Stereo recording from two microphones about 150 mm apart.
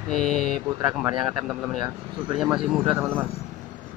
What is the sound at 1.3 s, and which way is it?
Speech, 20° right (ahead or behind).